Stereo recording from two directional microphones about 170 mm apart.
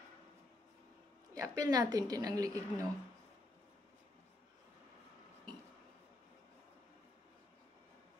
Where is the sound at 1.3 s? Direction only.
20° right (ahead or behind).